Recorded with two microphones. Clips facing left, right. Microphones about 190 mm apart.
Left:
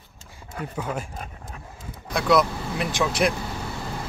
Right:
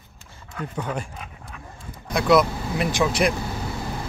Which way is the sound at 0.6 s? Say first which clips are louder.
Right 1 dB; 5° left (ahead or behind).